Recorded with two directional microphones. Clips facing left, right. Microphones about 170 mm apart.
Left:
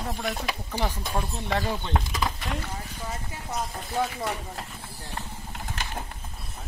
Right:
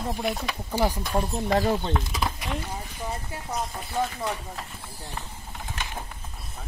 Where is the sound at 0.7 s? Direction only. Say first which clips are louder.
Right 5 dB; 40° right (ahead or behind).